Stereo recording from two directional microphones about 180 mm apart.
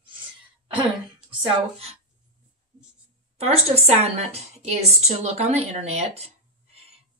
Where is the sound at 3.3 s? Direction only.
35° right (ahead or behind).